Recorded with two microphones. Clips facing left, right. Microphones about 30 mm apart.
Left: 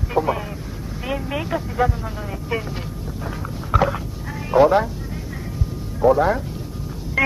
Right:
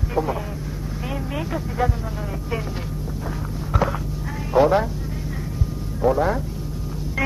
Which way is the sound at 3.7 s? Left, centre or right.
Left.